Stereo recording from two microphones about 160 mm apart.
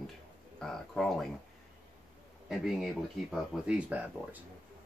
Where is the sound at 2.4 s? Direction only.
Centre (ahead or behind).